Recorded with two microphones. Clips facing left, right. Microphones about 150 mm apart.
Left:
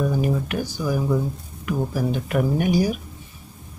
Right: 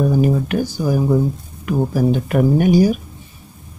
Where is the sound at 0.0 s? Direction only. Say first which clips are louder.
Right 6 dB; 35° right (ahead or behind).